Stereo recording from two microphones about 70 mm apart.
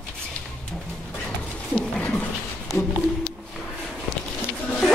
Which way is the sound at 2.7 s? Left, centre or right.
Left.